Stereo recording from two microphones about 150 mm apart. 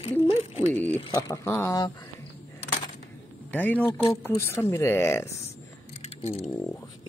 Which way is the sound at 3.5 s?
10° left (ahead or behind).